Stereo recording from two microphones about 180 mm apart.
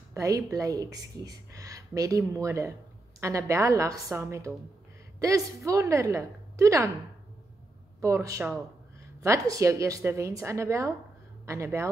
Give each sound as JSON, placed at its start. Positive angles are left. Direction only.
{"t": 0.1, "sound": "a woman's voice", "side_deg": -20}
{"t": 5.7, "sound": "a woman's voice", "side_deg": -15}
{"t": 8.0, "sound": "a woman's voice", "side_deg": -15}